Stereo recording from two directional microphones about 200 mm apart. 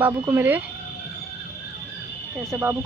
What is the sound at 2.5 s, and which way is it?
Speech, 10° right (ahead or behind).